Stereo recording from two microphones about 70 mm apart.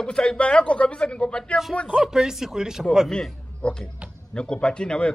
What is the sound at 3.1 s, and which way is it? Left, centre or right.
Speech, centre.